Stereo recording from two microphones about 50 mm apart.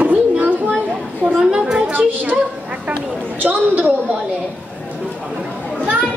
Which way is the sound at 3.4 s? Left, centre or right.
Right.